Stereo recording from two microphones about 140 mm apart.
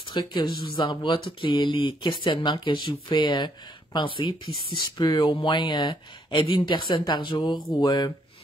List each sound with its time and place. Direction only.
0.1 s speech: 35° left (ahead or behind)